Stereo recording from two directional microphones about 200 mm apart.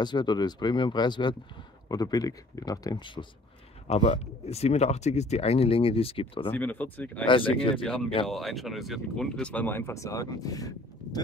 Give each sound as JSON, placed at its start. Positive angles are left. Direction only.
{"t": 0.0, "sound": "speech", "side_deg": 20}
{"t": 3.8, "sound": "speech", "side_deg": 30}
{"t": 6.5, "sound": "speech", "side_deg": 10}
{"t": 7.2, "sound": "speech", "side_deg": 25}
{"t": 7.7, "sound": "speech", "side_deg": 5}